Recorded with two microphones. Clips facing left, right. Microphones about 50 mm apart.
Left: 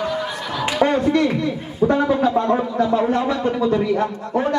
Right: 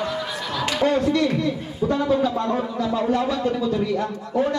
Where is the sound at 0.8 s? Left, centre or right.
Left.